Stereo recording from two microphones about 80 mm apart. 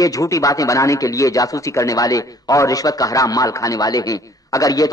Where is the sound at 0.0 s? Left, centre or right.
Left.